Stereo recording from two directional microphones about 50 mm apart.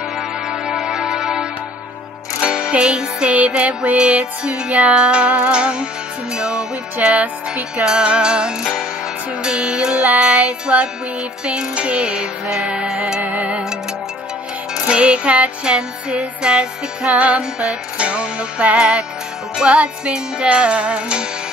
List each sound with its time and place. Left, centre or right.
0.5 s music: centre
13.2 s music: right
14.9 s music: right